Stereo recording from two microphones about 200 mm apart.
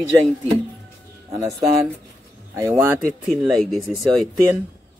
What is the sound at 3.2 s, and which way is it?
Speech, centre (ahead or behind).